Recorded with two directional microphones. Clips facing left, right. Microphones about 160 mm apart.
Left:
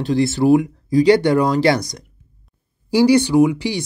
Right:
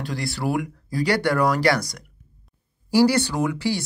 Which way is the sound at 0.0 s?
25° left (ahead or behind).